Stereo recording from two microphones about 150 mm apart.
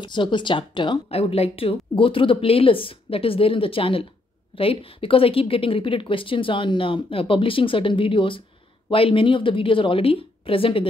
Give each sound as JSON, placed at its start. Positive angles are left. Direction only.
{"t": 0.0, "sound": "speech", "side_deg": 30}